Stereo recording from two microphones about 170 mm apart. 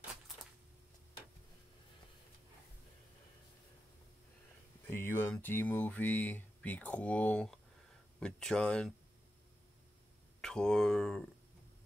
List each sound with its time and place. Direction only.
4.8 s speech: 15° left (ahead or behind)
10.4 s speech: 5° left (ahead or behind)